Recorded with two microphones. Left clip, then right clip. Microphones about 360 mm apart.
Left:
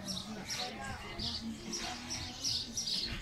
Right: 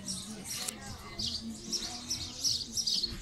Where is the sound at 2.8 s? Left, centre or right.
Right.